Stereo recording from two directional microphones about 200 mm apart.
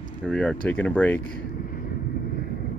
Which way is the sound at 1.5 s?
45° left (ahead or behind).